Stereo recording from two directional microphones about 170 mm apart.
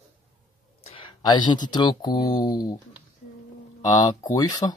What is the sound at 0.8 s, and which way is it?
Speech, 30° left (ahead or behind).